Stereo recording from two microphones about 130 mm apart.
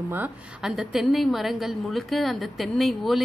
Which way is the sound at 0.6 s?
Centre (ahead or behind).